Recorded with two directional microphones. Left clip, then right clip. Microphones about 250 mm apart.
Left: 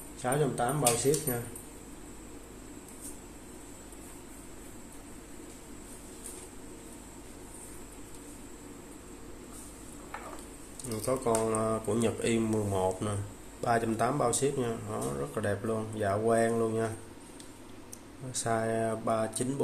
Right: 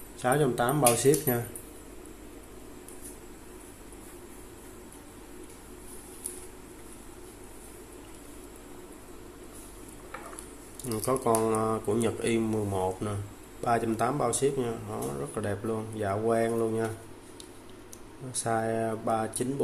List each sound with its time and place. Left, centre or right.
0.2 s speech: centre
10.9 s speech: centre
18.3 s speech: centre